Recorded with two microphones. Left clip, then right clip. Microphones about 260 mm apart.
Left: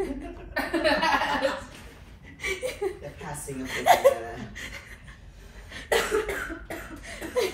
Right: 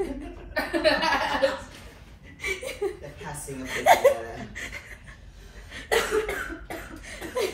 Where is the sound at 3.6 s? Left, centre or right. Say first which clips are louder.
Right 1 dB; centre.